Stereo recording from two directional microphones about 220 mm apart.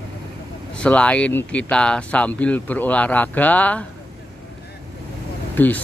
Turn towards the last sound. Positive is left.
turn(degrees=5)  # may be behind; listen again after turning